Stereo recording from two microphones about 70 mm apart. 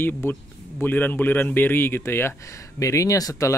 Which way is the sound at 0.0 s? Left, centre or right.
Left.